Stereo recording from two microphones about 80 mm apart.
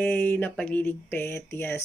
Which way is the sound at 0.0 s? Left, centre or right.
Left.